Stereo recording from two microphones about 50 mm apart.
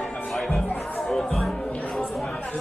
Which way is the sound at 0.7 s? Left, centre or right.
Left.